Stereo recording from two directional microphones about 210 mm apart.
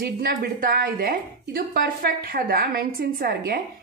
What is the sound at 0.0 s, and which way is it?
Speech, 45° right (ahead or behind).